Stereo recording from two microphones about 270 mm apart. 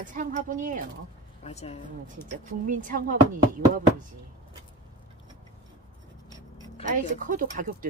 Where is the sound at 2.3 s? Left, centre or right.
Right.